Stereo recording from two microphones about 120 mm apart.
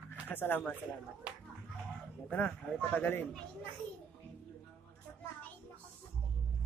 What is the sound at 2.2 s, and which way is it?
Speech, 10° left (ahead or behind).